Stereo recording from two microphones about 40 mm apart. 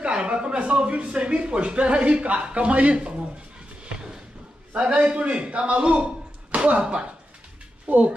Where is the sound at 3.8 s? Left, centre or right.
Right.